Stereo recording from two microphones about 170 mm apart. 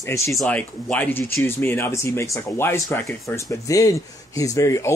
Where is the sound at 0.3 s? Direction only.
5° left (ahead or behind).